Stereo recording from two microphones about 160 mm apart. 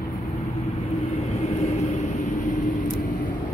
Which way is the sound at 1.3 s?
45° left (ahead or behind).